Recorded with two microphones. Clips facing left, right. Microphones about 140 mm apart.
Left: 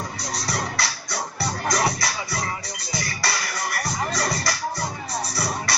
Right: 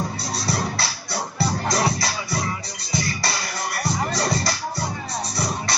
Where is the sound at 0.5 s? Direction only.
30° right (ahead or behind).